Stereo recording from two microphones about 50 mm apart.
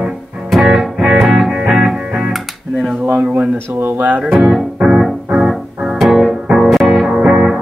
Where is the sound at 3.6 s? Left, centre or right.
Right.